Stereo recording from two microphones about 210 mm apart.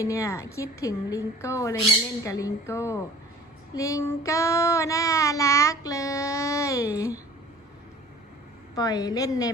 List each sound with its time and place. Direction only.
0.0 s child singing: 15° left (ahead or behind)
8.7 s child singing: 15° left (ahead or behind)